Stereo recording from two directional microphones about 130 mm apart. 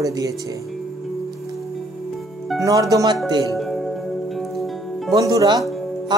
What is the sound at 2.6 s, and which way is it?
Speech, 25° right (ahead or behind).